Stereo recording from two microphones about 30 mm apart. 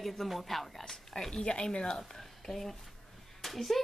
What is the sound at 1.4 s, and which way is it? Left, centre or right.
Speech, left.